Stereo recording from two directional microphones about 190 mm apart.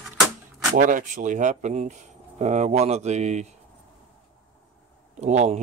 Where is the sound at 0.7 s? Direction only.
45° right (ahead or behind).